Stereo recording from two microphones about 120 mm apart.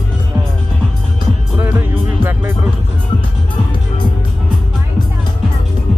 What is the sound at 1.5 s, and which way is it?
Music, 15° right (ahead or behind).